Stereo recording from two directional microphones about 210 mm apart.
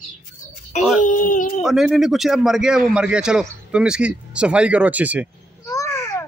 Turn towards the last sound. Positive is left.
turn(degrees=15)  # may be behind; listen again after turning